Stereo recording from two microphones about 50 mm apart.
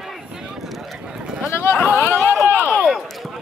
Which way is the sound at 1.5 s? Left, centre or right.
Left.